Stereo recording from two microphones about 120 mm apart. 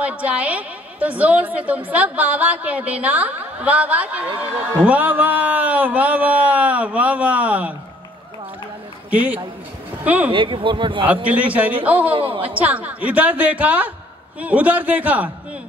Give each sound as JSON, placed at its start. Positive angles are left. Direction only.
{"t": 0.0, "sound": "a woman's voice", "side_deg": -10}
{"t": 9.1, "sound": "a woman's voice", "side_deg": -10}
{"t": 10.3, "sound": "speech", "side_deg": -45}
{"t": 11.5, "sound": "a woman's voice", "side_deg": -10}
{"t": 12.1, "sound": "speech", "side_deg": -50}
{"t": 12.5, "sound": "a woman's voice", "side_deg": -10}